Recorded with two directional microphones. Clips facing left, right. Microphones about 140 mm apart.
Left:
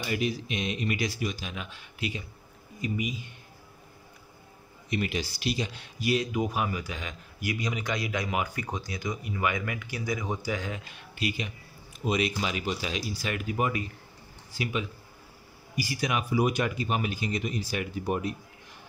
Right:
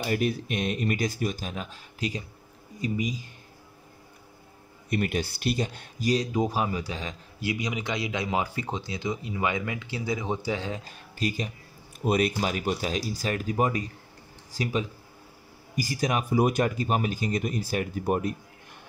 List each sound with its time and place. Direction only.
0.0 s speech: 50° right (ahead or behind)
4.8 s speech: 50° right (ahead or behind)